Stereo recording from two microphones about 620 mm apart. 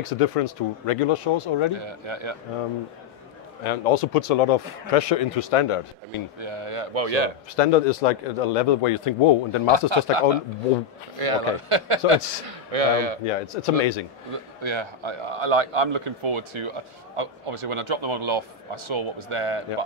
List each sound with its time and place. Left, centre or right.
0.0 s a man's voice: left
1.8 s a man's voice: right
3.6 s a man's voice: left
6.4 s a man's voice: right
7.5 s a man's voice: left
9.7 s a man's voice: right
11.1 s a man's voice: right
13.6 s a man's voice: left
14.3 s a man's voice: right